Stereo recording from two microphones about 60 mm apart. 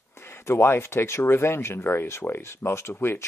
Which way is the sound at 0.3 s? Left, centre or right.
Left.